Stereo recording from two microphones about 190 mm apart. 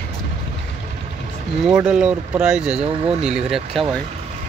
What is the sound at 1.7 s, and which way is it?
Speech, 5° right (ahead or behind).